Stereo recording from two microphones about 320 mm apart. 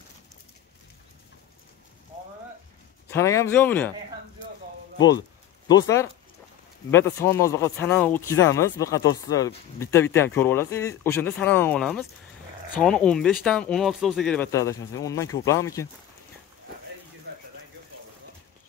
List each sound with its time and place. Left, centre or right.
3.1 s speech: centre
5.7 s speech: centre
17.3 s a sound: right